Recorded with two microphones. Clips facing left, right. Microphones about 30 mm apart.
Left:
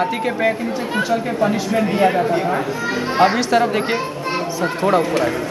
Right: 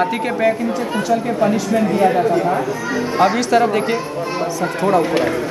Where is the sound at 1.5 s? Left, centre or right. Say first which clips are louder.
Right 2 dB; left.